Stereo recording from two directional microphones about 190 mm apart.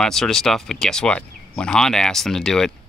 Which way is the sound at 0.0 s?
Centre (ahead or behind).